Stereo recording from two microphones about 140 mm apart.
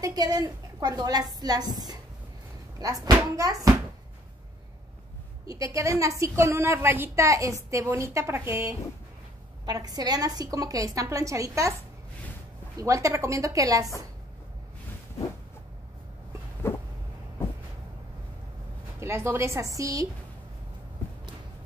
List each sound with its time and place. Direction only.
0.0 s a woman's voice: 25° right (ahead or behind)
5.5 s a woman's voice: 25° right (ahead or behind)
12.7 s a woman's voice: 25° right (ahead or behind)
16.6 s a sound: 15° left (ahead or behind)
18.9 s a woman's voice: 20° right (ahead or behind)